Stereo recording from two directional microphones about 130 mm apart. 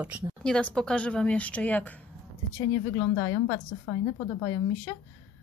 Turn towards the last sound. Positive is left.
turn(degrees=30)  # may be behind; listen again after turning